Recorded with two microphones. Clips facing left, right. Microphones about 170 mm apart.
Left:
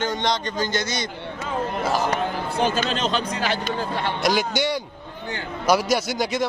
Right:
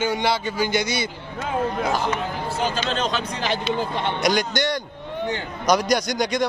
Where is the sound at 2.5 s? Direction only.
55° left (ahead or behind).